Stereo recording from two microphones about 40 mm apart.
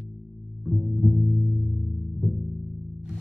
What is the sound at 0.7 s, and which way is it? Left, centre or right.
Music, centre.